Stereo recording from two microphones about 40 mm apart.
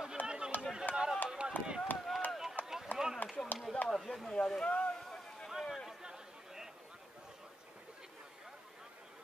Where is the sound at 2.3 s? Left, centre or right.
Centre.